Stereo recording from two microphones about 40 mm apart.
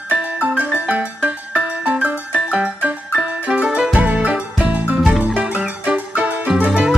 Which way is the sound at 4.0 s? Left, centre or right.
Right.